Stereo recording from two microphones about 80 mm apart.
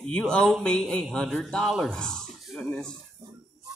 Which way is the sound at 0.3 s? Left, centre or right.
Centre.